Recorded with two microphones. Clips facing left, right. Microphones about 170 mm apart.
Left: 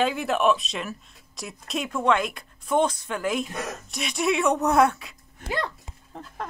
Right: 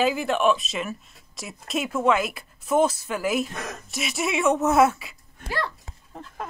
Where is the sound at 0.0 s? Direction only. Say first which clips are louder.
Right 1 dB; centre (ahead or behind).